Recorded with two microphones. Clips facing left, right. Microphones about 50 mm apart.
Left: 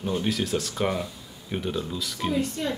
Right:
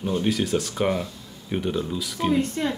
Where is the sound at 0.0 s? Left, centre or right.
Centre.